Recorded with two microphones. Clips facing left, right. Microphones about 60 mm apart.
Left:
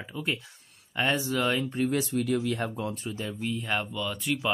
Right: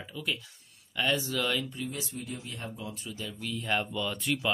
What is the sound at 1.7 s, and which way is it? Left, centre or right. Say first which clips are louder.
Speech: left 10 dB; left.